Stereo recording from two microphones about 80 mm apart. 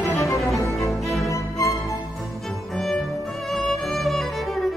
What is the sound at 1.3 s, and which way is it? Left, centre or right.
Music, left.